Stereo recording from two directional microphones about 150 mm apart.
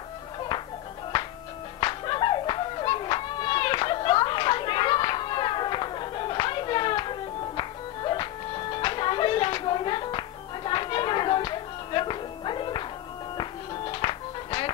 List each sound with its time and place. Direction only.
1.8 s music: 30° left (ahead or behind)